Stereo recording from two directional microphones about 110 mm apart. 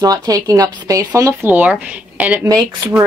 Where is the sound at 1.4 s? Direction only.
15° right (ahead or behind).